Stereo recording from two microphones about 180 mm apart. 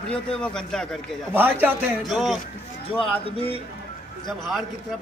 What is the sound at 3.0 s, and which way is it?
Speech, 30° left (ahead or behind).